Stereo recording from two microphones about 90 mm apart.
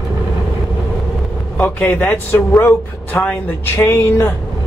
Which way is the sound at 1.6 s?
20° left (ahead or behind).